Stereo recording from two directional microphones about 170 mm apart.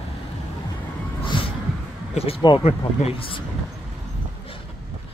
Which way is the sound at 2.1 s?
35° left (ahead or behind).